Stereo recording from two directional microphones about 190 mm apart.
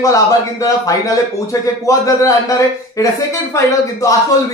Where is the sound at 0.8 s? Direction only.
15° left (ahead or behind).